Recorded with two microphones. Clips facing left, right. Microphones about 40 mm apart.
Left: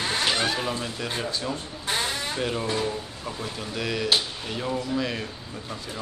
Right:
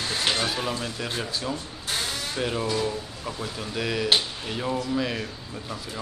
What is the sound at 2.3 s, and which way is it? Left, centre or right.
Speech, centre.